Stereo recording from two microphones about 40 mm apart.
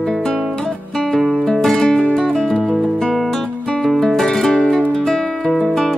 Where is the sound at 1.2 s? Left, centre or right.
Centre.